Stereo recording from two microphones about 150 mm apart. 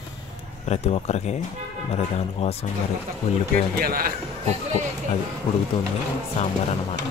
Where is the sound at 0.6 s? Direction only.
45° left (ahead or behind).